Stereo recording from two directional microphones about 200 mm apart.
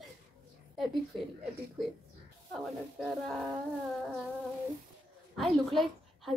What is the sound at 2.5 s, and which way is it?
A woman's voice, centre (ahead or behind).